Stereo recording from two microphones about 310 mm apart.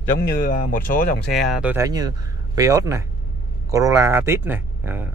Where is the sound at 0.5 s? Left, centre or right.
Left.